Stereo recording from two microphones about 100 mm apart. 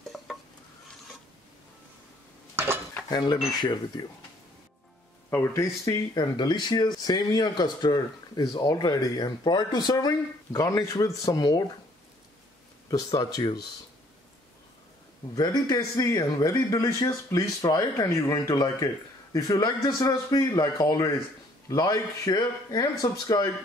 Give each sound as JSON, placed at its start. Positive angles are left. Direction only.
{"t": 0.1, "sound": "stir", "side_deg": 0}
{"t": 2.5, "sound": "dishes", "side_deg": -20}
{"t": 3.1, "sound": "speech", "side_deg": 45}
{"t": 5.3, "sound": "speech", "side_deg": 25}
{"t": 5.9, "sound": "a man's voice", "side_deg": 45}
{"t": 12.9, "sound": "a man's voice", "side_deg": 40}
{"t": 15.3, "sound": "a man's voice", "side_deg": 40}